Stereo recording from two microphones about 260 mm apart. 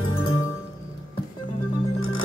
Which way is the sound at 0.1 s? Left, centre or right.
Left.